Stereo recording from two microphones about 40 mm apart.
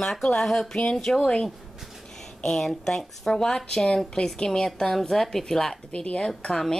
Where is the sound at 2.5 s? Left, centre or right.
Centre.